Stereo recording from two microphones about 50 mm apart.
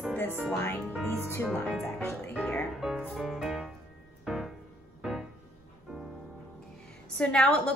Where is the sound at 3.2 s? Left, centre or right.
Centre.